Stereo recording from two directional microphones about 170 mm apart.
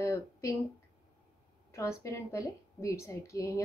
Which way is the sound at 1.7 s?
20° left (ahead or behind).